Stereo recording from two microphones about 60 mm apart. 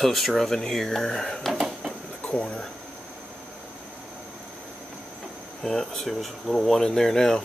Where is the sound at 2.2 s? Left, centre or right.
Centre.